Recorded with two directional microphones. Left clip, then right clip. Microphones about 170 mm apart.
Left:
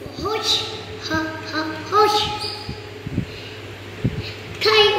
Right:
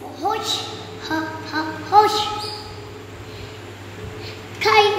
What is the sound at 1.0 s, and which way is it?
Music, 30° right (ahead or behind).